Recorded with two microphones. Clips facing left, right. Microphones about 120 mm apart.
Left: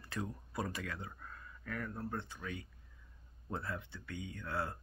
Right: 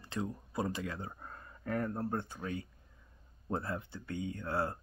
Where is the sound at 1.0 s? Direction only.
40° right (ahead or behind).